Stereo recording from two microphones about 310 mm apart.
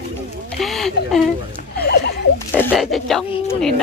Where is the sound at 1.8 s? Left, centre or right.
Left.